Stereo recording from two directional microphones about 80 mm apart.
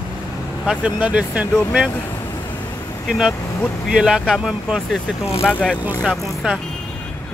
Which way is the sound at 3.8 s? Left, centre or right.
Centre.